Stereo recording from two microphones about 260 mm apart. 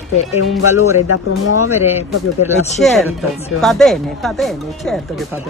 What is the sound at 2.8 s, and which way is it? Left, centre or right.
Speech, centre.